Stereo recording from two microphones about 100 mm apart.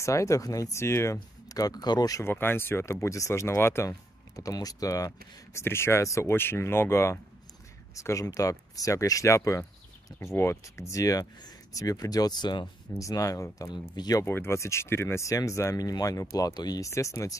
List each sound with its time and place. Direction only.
0.0 s speech: 30° left (ahead or behind)
2.2 s speech: 20° left (ahead or behind)
4.4 s speech: 35° left (ahead or behind)
13.0 s speech: 35° left (ahead or behind)
14.2 s speech: 25° left (ahead or behind)